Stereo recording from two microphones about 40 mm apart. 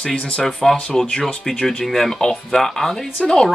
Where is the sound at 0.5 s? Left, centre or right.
Centre.